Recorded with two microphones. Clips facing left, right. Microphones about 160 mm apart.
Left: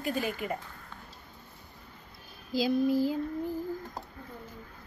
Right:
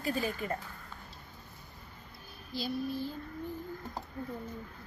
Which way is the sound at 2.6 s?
90° left.